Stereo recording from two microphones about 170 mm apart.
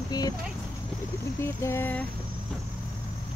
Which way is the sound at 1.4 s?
15° left (ahead or behind).